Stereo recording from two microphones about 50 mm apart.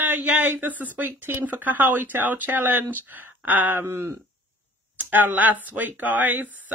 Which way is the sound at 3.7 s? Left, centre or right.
Right.